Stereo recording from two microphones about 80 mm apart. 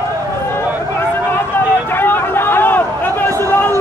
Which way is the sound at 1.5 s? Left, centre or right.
Left.